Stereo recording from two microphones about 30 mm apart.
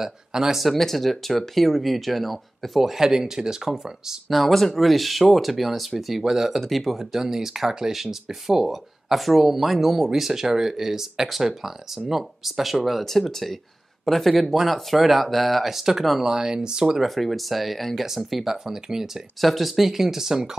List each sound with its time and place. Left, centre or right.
0.0 s speech: centre
0.6 s speech: centre
3.0 s speech: centre
4.3 s speech: centre
7.2 s speech: centre
15.7 s speech: centre
17.0 s speech: centre
18.3 s speech: centre
19.4 s speech: centre